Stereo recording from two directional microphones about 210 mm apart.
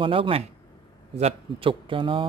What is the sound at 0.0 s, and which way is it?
Speech, 25° right (ahead or behind).